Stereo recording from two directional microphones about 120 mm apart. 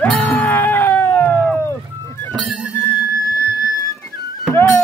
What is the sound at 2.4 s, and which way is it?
Music, centre (ahead or behind).